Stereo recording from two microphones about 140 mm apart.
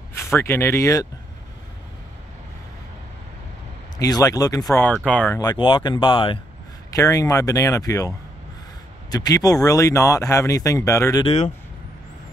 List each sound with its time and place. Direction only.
0.2 s speech: 15° left (ahead or behind)
4.0 s speech: 25° left (ahead or behind)
5.0 s speech: 10° left (ahead or behind)
5.4 s speech: 30° left (ahead or behind)
6.9 s speech: 25° left (ahead or behind)
9.1 s speech: 25° left (ahead or behind)
11.2 s speech: 45° left (ahead or behind)